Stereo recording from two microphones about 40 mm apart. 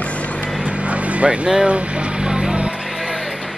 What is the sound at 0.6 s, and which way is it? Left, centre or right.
Vehicle, right.